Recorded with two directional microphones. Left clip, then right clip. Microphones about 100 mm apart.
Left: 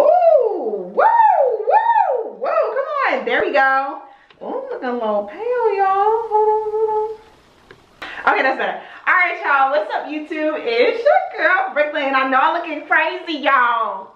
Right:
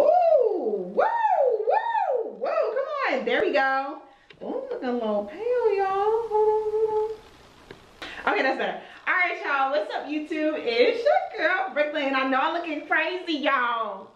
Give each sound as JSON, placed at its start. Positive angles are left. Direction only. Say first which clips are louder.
{"t": 0.0, "sound": "theremin", "louder": "left 6 dB", "side_deg": 15}
{"t": 0.9, "sound": "music", "louder": "left 10 dB", "side_deg": 15}
{"t": 2.4, "sound": "a sound", "louder": "left 8 dB", "side_deg": 20}
{"t": 8.0, "sound": "a woman's voice", "louder": "left 8 dB", "side_deg": 20}